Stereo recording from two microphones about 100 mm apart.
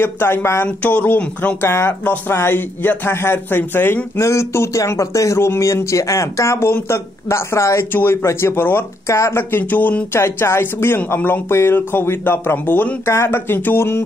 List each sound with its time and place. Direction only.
0.0 s speech: 25° left (ahead or behind)